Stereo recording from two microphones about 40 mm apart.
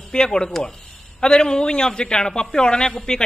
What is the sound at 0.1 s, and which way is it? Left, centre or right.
A man's voice, centre.